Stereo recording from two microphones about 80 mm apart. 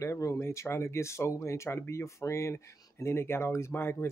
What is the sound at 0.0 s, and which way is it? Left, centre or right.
Speech, left.